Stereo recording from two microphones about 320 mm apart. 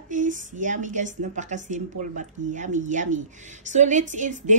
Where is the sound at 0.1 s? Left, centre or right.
Right.